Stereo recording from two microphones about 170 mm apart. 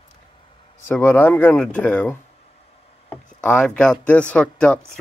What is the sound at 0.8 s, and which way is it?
Speech, 10° left (ahead or behind).